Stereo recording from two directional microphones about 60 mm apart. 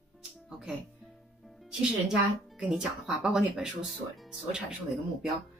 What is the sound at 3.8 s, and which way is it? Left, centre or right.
Speech, centre.